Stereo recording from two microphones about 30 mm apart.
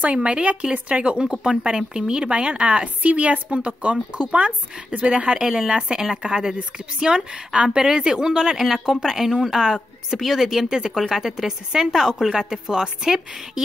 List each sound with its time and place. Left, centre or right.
0.0 s a woman's voice: right
2.6 s speech: right
5.6 s a woman's voice: right